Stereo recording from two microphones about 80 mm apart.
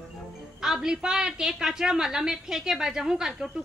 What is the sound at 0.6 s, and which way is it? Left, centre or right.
A woman's voice, centre.